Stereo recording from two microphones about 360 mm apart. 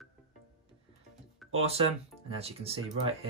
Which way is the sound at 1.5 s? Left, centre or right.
Centre.